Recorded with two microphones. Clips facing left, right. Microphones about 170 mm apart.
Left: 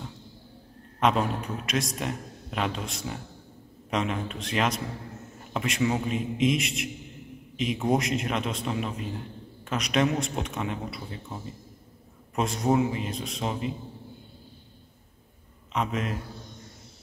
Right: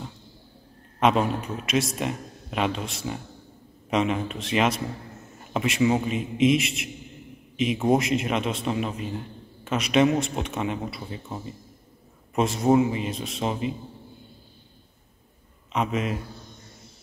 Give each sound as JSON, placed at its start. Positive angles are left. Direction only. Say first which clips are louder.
{"t": 0.9, "sound": "a man's voice", "louder": "right 3 dB", "side_deg": -5}
{"t": 12.4, "sound": "a man's voice", "louder": "right 4 dB", "side_deg": -5}
{"t": 15.7, "sound": "a man's voice", "louder": "right 3 dB", "side_deg": -5}